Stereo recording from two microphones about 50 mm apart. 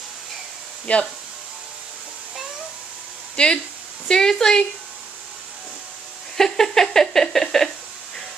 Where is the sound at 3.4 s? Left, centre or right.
Left.